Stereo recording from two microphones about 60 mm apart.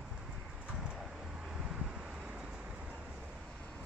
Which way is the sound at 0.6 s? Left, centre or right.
Centre.